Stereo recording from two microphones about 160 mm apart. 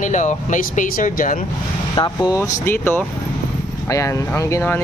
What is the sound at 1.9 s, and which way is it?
Speech, 25° left (ahead or behind).